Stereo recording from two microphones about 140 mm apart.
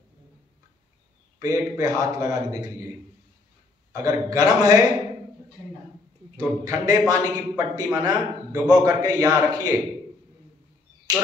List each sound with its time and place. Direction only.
1.4 s a man's voice: 20° right (ahead or behind)
3.9 s a man's voice: 20° right (ahead or behind)
6.6 s a man's voice: 25° right (ahead or behind)